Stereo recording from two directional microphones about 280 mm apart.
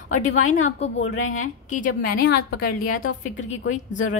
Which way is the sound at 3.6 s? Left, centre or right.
Left.